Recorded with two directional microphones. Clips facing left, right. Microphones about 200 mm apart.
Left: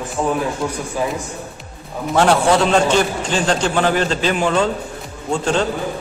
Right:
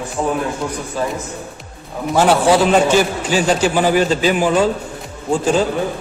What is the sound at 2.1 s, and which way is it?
A man's voice, 5° right (ahead or behind).